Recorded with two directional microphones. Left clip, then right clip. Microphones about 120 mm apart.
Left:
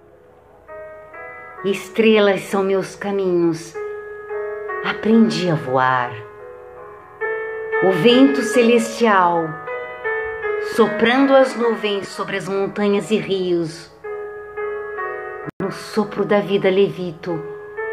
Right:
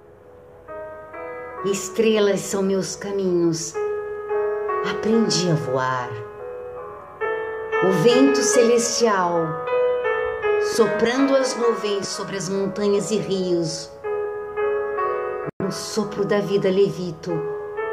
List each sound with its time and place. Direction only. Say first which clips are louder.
1.6 s speech: left 3 dB; 10° right (ahead or behind)
4.3 s music: right 3 dB; 40° right (ahead or behind)
4.8 s speech: left 6 dB; 10° right (ahead or behind)
7.3 s music: left 3 dB; 35° right (ahead or behind)
7.8 s speech: left 3 dB; 15° right (ahead or behind)
9.5 s music: right 7 dB; 35° right (ahead or behind)
10.6 s music: left 3 dB; 20° right (ahead or behind)
11.0 s speech: left 5 dB; 15° right (ahead or behind)
14.0 s music: right 3 dB; 40° right (ahead or behind)
15.7 s speech: left 3 dB; 10° right (ahead or behind)
17.3 s music: right 4 dB; 35° right (ahead or behind)